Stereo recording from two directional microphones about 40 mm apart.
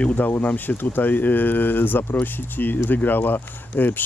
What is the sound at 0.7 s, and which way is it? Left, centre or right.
Speech, left.